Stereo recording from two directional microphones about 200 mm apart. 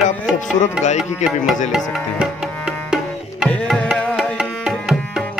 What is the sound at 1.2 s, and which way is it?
Speech, 35° left (ahead or behind).